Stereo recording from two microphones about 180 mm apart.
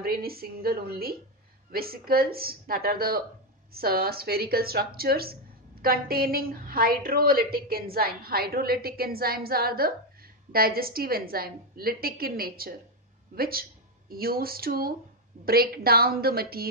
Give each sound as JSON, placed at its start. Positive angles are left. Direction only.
{"t": 0.0, "sound": "speech", "side_deg": -60}